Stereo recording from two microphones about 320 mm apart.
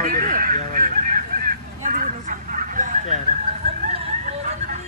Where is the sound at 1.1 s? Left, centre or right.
Right.